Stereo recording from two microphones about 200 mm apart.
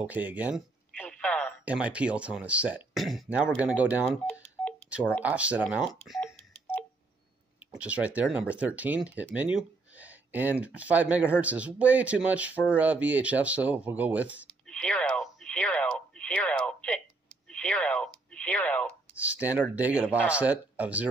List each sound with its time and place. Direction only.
0.0 s speech: 10° right (ahead or behind)
0.9 s telephone: 5° left (ahead or behind)
1.6 s speech: 5° right (ahead or behind)
4.8 s telephone dialing: 5° right (ahead or behind)
5.2 s speech: 5° right (ahead or behind)
5.7 s telephone dialing: centre (ahead or behind)
7.7 s speech: 5° right (ahead or behind)
14.7 s radio: 5° left (ahead or behind)
17.5 s speech: 5° left (ahead or behind)
19.1 s speech: 10° right (ahead or behind)